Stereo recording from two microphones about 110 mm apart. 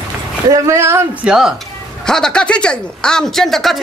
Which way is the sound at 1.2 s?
5° right (ahead or behind).